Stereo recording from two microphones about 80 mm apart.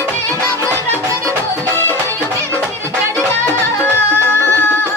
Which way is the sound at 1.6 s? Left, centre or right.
Left.